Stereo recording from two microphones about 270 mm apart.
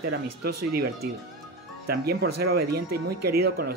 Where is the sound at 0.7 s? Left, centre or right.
Right.